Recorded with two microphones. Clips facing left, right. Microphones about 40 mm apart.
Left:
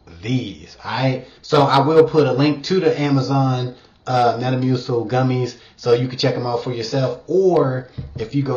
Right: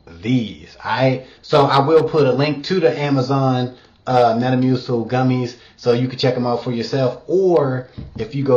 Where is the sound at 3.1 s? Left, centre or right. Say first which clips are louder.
Right 1 dB; right.